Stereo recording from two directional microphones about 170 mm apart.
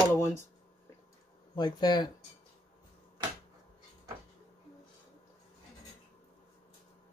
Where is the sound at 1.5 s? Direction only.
25° left (ahead or behind).